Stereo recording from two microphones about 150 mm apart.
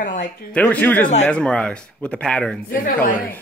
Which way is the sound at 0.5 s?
10° left (ahead or behind).